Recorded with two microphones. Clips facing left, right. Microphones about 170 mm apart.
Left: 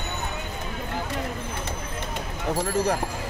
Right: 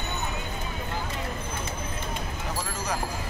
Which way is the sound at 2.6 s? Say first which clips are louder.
Left 9 dB; 55° left (ahead or behind).